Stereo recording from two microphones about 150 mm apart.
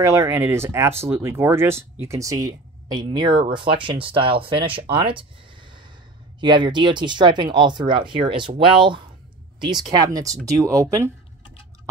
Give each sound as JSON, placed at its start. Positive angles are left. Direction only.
{"t": 0.0, "sound": "speech", "side_deg": -20}